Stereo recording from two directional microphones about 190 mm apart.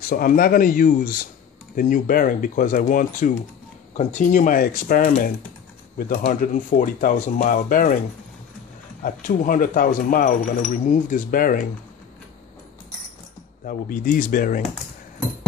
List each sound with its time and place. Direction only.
0.1 s speech: 45° left (ahead or behind)
9.0 s speech: 45° left (ahead or behind)
13.7 s speech: 45° left (ahead or behind)